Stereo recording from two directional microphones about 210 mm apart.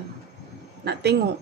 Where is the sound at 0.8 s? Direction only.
55° right (ahead or behind).